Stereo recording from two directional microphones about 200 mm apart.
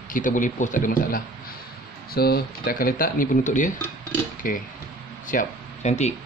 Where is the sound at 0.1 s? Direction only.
40° left (ahead or behind).